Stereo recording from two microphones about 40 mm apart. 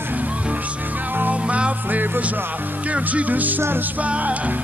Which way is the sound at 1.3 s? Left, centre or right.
Right.